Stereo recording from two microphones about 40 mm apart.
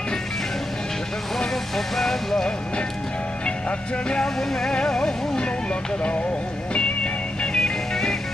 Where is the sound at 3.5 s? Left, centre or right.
Left.